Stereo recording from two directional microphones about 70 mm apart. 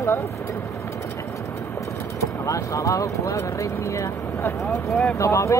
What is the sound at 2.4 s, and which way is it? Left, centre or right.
Speech, left.